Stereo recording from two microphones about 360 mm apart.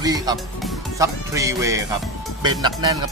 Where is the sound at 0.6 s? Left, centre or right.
Centre.